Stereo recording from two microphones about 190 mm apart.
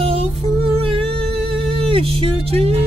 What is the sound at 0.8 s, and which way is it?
Music, 30° right (ahead or behind).